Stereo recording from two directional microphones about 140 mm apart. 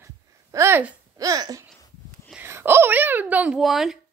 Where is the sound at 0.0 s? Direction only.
20° right (ahead or behind).